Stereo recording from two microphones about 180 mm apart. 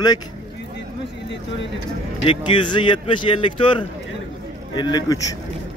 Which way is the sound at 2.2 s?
25° left (ahead or behind).